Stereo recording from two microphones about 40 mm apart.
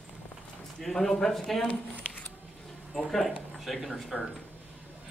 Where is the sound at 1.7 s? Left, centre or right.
Left.